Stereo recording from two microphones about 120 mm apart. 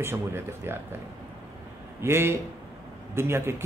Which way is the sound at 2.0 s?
20° right (ahead or behind).